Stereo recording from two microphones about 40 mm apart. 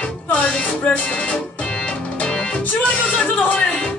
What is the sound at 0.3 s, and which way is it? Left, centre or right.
Music, left.